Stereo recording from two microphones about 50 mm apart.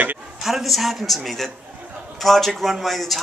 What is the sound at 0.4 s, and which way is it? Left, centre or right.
A man's voice, centre.